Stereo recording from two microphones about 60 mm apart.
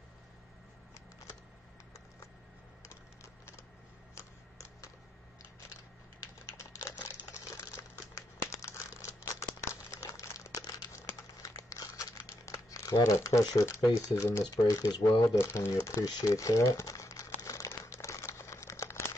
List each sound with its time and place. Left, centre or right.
4.1 s typewriter: left
6.5 s typing: left
7.2 s a sound: left
8.5 s crumpling: left
14.0 s speech: left
14.4 s speech: left
15.3 s speech: left
16.0 s crumpling: left
17.6 s crumpling: left
18.2 s a sound: left